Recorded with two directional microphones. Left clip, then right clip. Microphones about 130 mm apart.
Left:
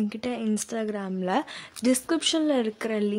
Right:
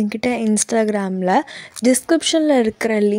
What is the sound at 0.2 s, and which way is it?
Speech, 65° right (ahead or behind).